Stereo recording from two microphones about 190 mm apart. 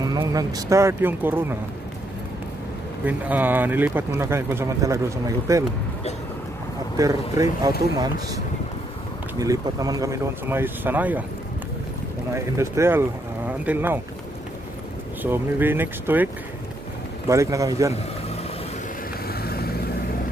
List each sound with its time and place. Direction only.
0.0 s speech: 20° right (ahead or behind)
3.1 s speech: 10° right (ahead or behind)
7.0 s speech: 20° right (ahead or behind)
9.4 s speech: 20° right (ahead or behind)
12.4 s speech: 15° right (ahead or behind)
15.2 s speech: 10° right (ahead or behind)
17.3 s speech: 15° right (ahead or behind)
19.2 s vehicle: 55° left (ahead or behind)